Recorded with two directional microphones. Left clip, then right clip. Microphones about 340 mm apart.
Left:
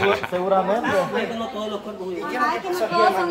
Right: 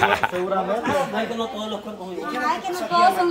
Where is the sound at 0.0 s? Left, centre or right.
Centre.